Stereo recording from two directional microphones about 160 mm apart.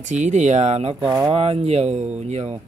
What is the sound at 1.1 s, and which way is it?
Speech, 20° right (ahead or behind).